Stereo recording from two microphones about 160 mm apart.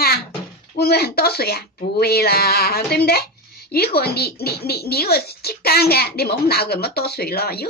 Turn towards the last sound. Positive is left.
turn(degrees=75)  # may be behind; listen again after turning